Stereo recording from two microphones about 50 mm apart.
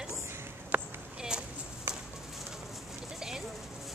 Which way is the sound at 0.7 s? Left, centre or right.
Right.